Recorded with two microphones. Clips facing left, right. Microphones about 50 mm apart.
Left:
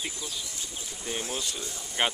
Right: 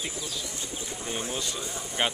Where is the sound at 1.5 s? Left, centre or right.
Centre.